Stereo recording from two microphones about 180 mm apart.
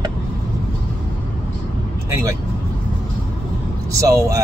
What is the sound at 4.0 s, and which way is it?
Speech, 15° right (ahead or behind).